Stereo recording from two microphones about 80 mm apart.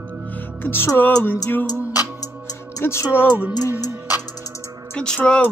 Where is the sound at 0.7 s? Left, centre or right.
Left.